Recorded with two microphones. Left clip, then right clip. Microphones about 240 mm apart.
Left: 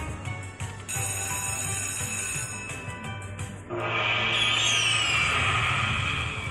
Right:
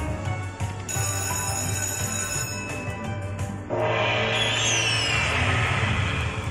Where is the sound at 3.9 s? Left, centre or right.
Right.